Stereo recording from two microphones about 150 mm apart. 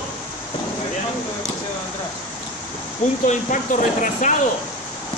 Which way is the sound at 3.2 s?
60° left (ahead or behind).